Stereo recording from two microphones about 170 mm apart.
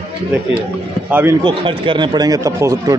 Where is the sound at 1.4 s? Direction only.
30° right (ahead or behind).